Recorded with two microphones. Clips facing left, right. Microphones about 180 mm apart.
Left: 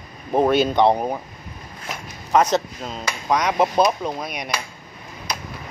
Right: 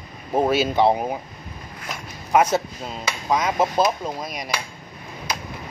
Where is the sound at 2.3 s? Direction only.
10° right (ahead or behind).